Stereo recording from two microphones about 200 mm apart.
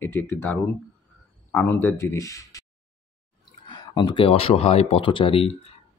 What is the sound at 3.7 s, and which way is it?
Speech, 25° left (ahead or behind).